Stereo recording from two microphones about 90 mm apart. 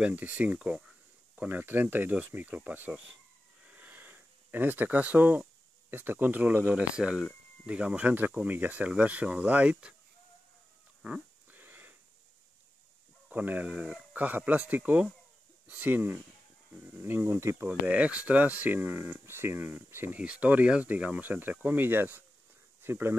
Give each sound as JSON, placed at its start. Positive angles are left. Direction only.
{"t": 0.0, "sound": "speech", "side_deg": -15}
{"t": 11.0, "sound": "a sound", "side_deg": -5}
{"t": 11.5, "sound": "wheeze", "side_deg": -20}
{"t": 13.3, "sound": "speech", "side_deg": -20}
{"t": 17.6, "sound": "speech", "side_deg": -15}